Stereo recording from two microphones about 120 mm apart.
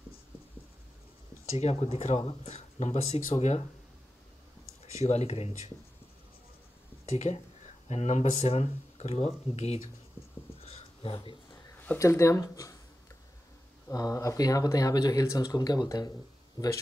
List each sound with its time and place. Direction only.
1.6 s speech: 60° left (ahead or behind)
4.8 s speech: 65° left (ahead or behind)
7.1 s speech: 65° left (ahead or behind)
10.6 s a sound: 55° left (ahead or behind)
12.0 s speech: 25° left (ahead or behind)
13.8 s speech: 30° left (ahead or behind)